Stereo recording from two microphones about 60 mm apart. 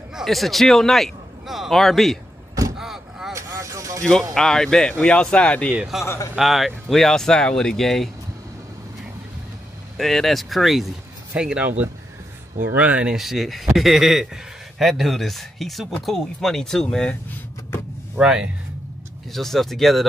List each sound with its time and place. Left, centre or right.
0.1 s a man's voice: centre
2.8 s vehicle: centre
3.3 s vehicle: right
4.3 s speech: centre
5.9 s speech: centre
9.9 s speech: centre
11.3 s speech: centre
13.1 s speech: centre
18.1 s speech: centre
19.3 s speech: centre